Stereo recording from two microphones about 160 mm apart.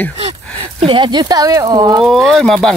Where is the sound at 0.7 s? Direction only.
30° right (ahead or behind).